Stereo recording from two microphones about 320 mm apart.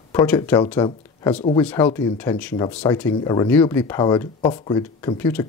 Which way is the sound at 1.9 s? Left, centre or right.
Centre.